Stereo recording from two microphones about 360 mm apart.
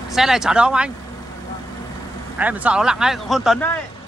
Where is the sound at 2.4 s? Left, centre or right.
Centre.